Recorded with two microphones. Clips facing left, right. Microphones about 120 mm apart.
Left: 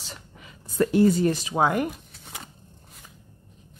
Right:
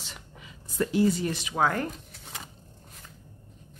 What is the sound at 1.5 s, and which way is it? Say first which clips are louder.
Speech: left 3 dB; 20° left (ahead or behind).